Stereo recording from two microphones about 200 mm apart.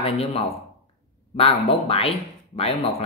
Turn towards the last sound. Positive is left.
turn(degrees=30)  # may be behind; listen again after turning